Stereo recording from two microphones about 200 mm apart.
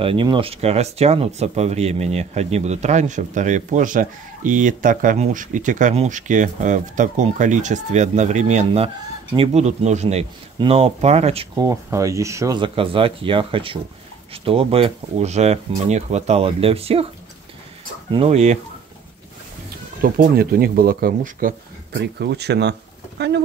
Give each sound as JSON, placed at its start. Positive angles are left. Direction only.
{"t": 0.0, "sound": "speech", "side_deg": -25}
{"t": 11.5, "sound": "speech", "side_deg": -15}
{"t": 18.1, "sound": "speech", "side_deg": -30}
{"t": 20.0, "sound": "speech", "side_deg": -45}